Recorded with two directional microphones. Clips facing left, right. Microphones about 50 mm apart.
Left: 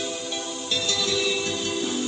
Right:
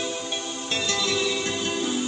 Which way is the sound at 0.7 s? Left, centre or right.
Right.